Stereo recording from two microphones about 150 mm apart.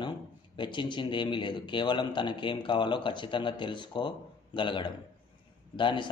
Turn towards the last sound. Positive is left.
turn(degrees=30)  # may be behind; listen again after turning